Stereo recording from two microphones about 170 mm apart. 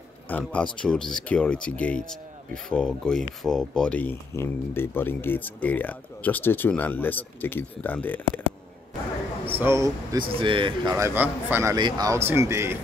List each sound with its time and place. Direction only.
0.3 s speech: 5° left (ahead or behind)
9.5 s speech: 15° right (ahead or behind)
10.1 s speech: 30° right (ahead or behind)